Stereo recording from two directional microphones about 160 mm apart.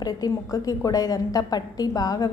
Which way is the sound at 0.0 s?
25° left (ahead or behind).